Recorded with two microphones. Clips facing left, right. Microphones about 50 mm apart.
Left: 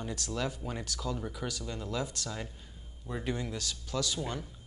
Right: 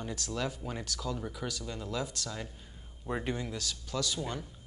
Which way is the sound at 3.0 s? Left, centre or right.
Right.